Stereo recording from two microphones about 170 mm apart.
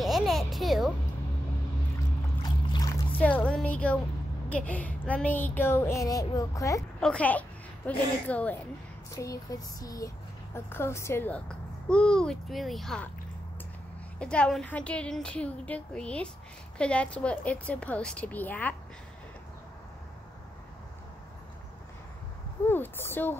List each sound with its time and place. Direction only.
0.0 s music: centre (ahead or behind)
2.4 s boat: 25° left (ahead or behind)
3.2 s speech: 10° left (ahead or behind)
7.0 s a woman's voice: 5° left (ahead or behind)
9.1 s speech: 20° left (ahead or behind); by 13.1 s 5° left (ahead or behind)
14.2 s speech: 5° left (ahead or behind)
22.7 s speech: 10° left (ahead or behind)